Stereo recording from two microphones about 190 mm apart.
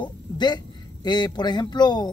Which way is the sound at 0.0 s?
20° left (ahead or behind).